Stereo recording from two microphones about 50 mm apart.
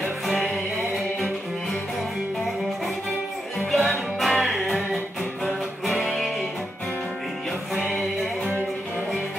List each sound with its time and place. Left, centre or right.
0.4 s music: centre
3.5 s music: centre
7.7 s music: centre